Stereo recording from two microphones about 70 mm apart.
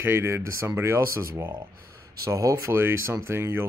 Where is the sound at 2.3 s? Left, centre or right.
Right.